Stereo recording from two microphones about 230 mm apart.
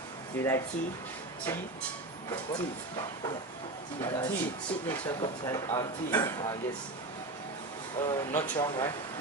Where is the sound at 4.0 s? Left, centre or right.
Centre.